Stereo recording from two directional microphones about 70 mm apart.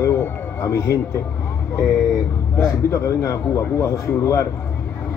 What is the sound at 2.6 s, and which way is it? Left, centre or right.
A man's voice, left.